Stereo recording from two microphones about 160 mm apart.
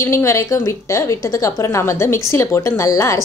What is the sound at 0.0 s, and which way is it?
A woman's voice, 20° left (ahead or behind).